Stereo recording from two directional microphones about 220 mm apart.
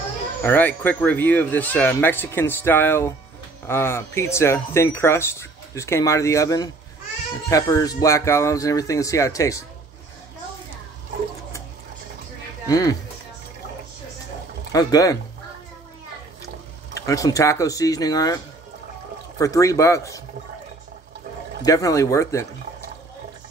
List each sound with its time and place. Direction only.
0.4 s speech: 10° left (ahead or behind)
12.6 s speech: 15° left (ahead or behind)
14.7 s speech: 15° left (ahead or behind)
16.9 s speech: 15° left (ahead or behind)
21.6 s speech: 15° left (ahead or behind)